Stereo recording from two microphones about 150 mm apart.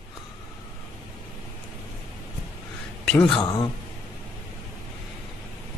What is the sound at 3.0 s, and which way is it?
Speech, 5° left (ahead or behind).